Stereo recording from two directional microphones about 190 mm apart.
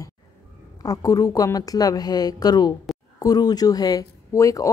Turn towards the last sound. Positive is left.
turn(degrees=15)  # may be behind; listen again after turning